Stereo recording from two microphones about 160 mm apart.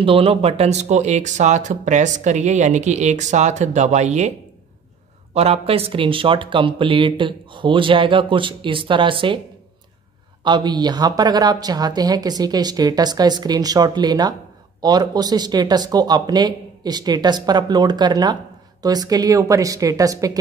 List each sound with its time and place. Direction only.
0.0 s speech: 35° right (ahead or behind)
5.3 s speech: 40° right (ahead or behind)
10.4 s speech: 25° right (ahead or behind)